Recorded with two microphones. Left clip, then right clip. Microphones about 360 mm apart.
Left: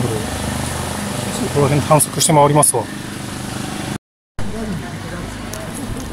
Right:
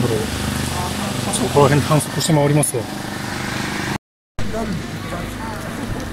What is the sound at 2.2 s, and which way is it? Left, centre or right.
Speech, left.